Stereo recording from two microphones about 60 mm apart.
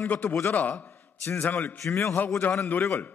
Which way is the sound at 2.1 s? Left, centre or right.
Left.